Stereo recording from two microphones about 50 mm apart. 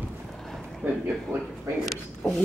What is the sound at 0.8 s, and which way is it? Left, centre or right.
Speech, right.